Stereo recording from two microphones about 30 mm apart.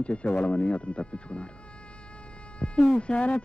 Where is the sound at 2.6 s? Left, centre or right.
Left.